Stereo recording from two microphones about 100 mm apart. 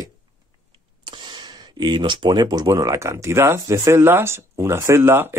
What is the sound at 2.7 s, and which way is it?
Speech, 30° right (ahead or behind).